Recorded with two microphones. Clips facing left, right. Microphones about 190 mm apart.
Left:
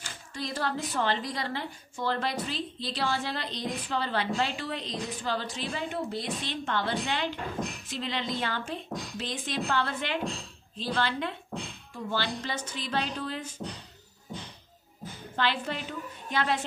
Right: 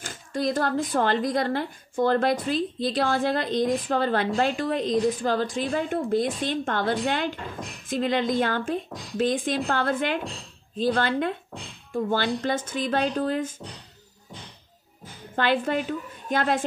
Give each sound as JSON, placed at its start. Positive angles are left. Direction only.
{"t": 0.0, "sound": "speech", "side_deg": -50}
{"t": 15.3, "sound": "speech", "side_deg": -50}